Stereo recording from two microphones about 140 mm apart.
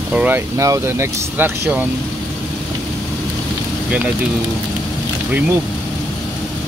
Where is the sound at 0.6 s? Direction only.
20° right (ahead or behind).